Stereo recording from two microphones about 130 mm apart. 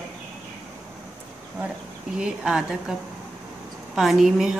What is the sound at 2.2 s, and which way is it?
Speech, 5° right (ahead or behind).